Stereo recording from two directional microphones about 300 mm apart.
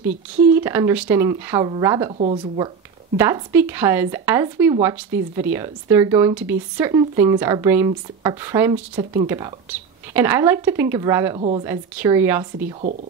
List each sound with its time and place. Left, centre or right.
0.5 s speech: centre